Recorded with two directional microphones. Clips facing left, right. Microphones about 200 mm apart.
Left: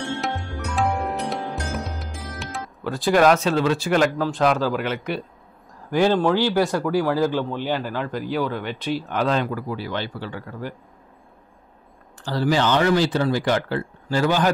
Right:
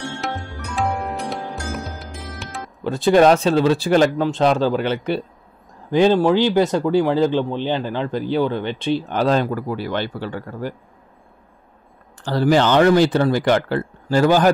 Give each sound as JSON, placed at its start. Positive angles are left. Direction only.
{"t": 0.2, "sound": "music", "side_deg": 0}
{"t": 2.8, "sound": "speech", "side_deg": -25}
{"t": 12.3, "sound": "speech", "side_deg": -55}